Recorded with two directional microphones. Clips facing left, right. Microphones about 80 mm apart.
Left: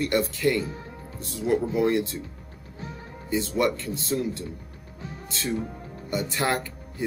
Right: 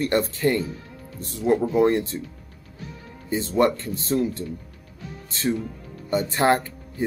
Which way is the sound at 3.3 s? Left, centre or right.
Right.